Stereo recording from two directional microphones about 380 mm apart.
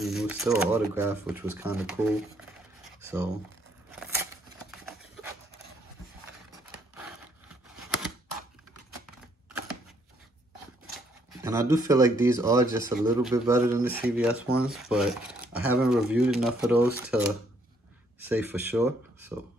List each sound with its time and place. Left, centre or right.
0.0 s speech: centre
3.0 s a sound: centre
11.4 s speech: centre
18.2 s speech: centre